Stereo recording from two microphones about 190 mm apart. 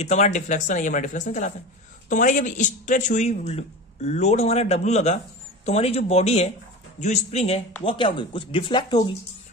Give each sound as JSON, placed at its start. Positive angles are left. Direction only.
{"t": 0.0, "sound": "a man's voice", "side_deg": 35}